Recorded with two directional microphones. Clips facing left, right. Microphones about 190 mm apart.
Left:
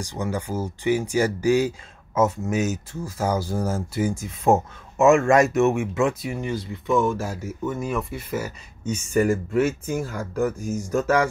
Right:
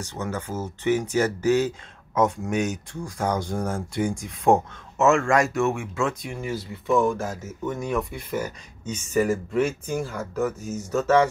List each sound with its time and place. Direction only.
0.0 s speech: 15° left (ahead or behind)
5.0 s speech: 20° left (ahead or behind)
6.2 s speech: centre (ahead or behind)